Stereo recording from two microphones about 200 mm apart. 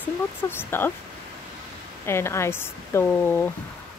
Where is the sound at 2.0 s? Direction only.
15° left (ahead or behind).